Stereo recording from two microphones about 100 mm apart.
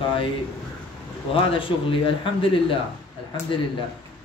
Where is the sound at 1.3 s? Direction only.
60° left (ahead or behind).